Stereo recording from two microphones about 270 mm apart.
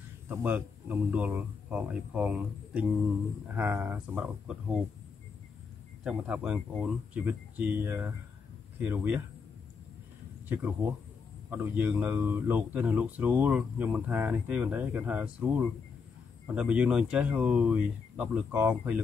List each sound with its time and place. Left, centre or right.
0.3 s speech: centre
6.0 s speech: centre
10.5 s speech: centre